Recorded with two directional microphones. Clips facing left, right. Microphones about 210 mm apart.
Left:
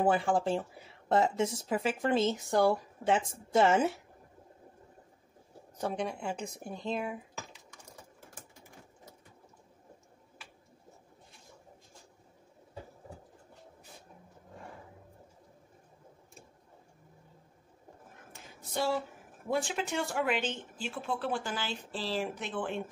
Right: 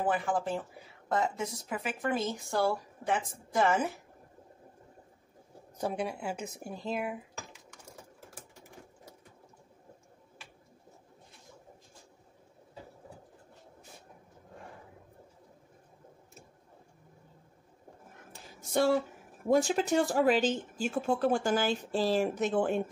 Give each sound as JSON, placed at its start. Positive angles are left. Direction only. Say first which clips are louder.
{"t": 0.0, "sound": "speech", "louder": "left 3 dB", "side_deg": 30}
{"t": 5.8, "sound": "a woman's voice", "louder": "right 1 dB", "side_deg": -10}
{"t": 18.3, "sound": "a sound", "louder": "right 7 dB", "side_deg": -50}
{"t": 19.5, "sound": "speech", "louder": "right 7 dB", "side_deg": -40}